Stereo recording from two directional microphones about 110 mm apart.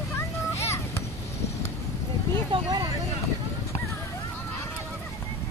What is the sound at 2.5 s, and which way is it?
Vehicle, 40° right (ahead or behind).